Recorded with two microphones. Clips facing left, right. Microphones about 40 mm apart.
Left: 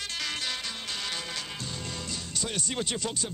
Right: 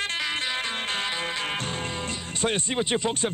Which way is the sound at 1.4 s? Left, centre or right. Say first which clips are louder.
Right 8 dB; right.